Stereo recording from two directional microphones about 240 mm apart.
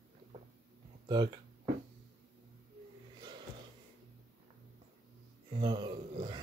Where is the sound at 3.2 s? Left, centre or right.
Centre.